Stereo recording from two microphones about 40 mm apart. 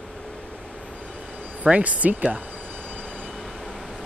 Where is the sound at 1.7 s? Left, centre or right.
Right.